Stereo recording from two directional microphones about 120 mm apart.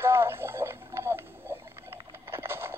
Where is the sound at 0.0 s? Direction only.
20° right (ahead or behind).